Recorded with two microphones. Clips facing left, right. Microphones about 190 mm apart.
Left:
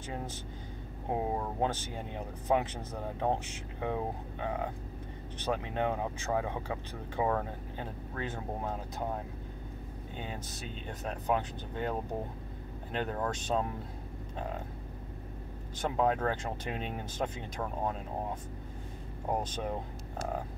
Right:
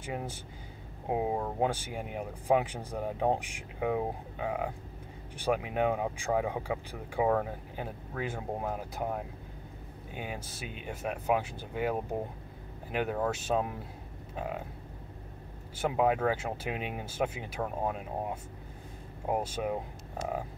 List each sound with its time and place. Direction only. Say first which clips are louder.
0.0 s speech: right 2 dB; 10° right (ahead or behind)
14.3 s vehicle: right 2 dB; 10° right (ahead or behind)
15.8 s speech: right 2 dB; 10° right (ahead or behind)